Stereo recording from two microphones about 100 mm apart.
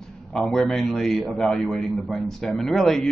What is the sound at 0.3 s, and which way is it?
A man's voice, 5° left (ahead or behind).